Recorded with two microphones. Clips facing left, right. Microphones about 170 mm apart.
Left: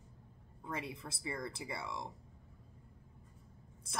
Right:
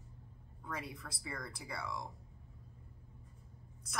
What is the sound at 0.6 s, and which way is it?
Speech, 25° left (ahead or behind).